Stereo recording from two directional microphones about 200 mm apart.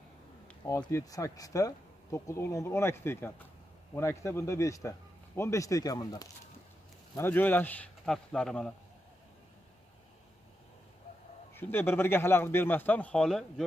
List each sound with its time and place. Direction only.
0.7 s speech: 15° left (ahead or behind)
11.5 s speech: 10° left (ahead or behind)